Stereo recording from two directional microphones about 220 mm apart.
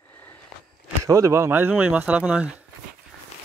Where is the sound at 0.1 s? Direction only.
10° left (ahead or behind).